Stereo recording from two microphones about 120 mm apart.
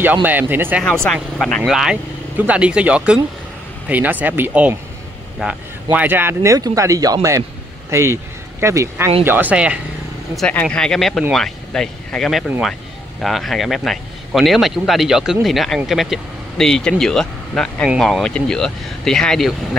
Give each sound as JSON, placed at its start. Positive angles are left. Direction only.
{"t": 0.0, "sound": "speech", "side_deg": -15}
{"t": 1.0, "sound": "speech", "side_deg": 5}
{"t": 10.5, "sound": "speech", "side_deg": 10}